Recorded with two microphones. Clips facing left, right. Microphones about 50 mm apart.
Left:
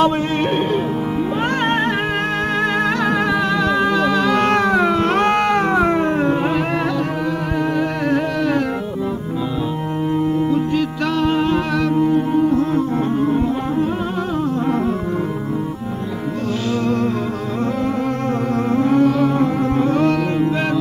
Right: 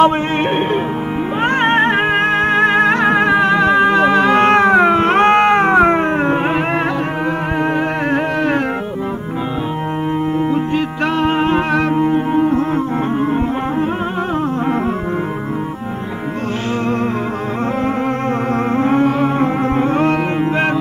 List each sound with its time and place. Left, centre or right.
0.0 s music: right
8.1 s music: right
11.1 s music: right
18.8 s music: right